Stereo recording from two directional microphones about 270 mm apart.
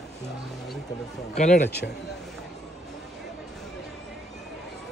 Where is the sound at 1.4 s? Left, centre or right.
Left.